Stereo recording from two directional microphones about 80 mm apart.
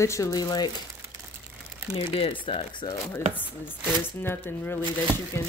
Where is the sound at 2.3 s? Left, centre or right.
Left.